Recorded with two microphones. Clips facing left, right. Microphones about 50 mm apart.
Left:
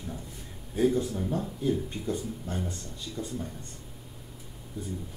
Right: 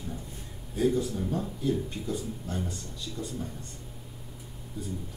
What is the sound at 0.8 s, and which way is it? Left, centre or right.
Speech, centre.